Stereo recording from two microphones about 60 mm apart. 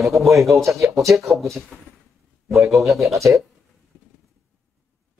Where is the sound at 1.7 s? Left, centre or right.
Centre.